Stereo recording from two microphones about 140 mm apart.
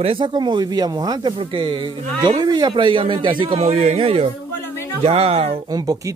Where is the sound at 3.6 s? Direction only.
50° right (ahead or behind).